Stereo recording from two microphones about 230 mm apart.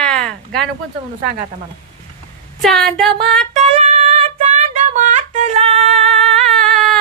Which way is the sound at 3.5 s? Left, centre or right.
Right.